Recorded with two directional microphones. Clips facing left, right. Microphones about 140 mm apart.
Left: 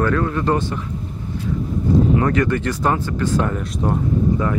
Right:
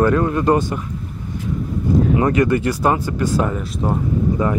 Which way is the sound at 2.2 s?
10° right (ahead or behind).